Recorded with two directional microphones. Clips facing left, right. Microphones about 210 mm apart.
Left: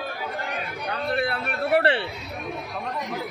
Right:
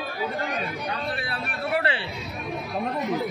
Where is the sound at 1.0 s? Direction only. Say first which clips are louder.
Left 5 dB; 60° left (ahead or behind).